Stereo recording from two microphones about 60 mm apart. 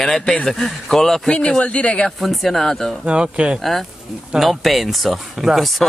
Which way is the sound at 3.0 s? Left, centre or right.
Centre.